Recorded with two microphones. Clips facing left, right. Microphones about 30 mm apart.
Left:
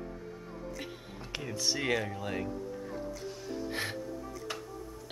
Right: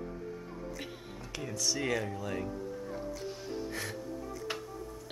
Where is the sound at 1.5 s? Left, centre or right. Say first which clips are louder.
Left 1 dB; left.